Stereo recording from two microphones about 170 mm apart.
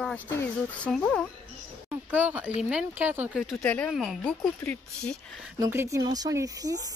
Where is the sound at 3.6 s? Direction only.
10° left (ahead or behind).